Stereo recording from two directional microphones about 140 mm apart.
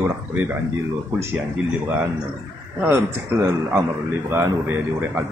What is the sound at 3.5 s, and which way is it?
Speech, 15° right (ahead or behind).